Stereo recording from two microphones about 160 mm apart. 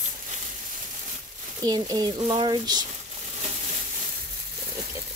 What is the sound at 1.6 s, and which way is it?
Speech, 25° right (ahead or behind).